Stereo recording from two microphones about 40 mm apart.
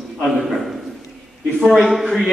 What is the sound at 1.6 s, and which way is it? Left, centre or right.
Speech, centre.